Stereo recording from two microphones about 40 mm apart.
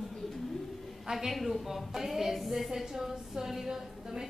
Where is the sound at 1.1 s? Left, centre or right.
Centre.